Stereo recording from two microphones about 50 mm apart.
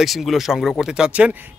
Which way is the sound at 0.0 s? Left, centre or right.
Centre.